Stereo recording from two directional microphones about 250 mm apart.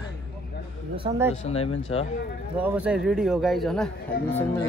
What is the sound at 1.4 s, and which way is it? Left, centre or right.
Speech, left.